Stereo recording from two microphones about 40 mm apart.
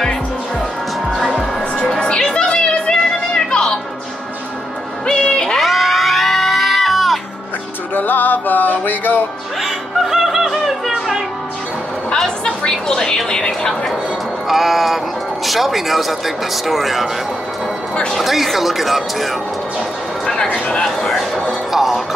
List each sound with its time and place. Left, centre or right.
1.1 s music: centre
2.4 s a sound: left
5.0 s music: left
5.6 s music: centre
7.9 s music: left
9.6 s music: centre
12.4 s a sound: centre
14.5 s music: centre
15.4 s speech: centre
18.1 s speech: centre
20.4 s speech: left
20.8 s speech: centre